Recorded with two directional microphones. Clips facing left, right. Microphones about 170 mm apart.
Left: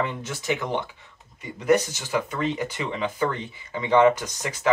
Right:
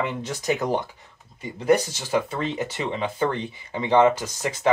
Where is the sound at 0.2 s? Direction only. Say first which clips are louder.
Right 3 dB; 40° right (ahead or behind).